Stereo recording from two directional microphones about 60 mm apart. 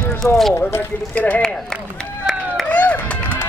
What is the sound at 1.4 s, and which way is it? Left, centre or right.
Speech, centre.